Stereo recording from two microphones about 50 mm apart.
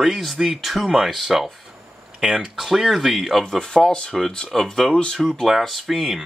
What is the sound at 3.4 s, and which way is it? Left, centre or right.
Speech, centre.